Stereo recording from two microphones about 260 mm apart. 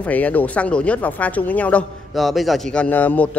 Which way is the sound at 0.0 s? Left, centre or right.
Centre.